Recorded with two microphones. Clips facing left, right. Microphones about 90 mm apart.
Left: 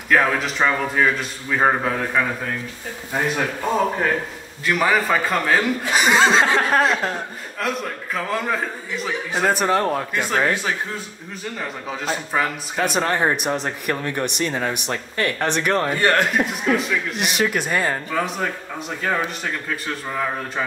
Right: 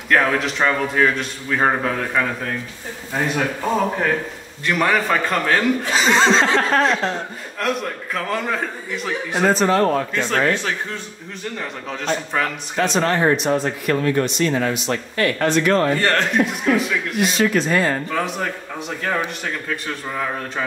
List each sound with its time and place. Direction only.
0.1 s speech: centre (ahead or behind)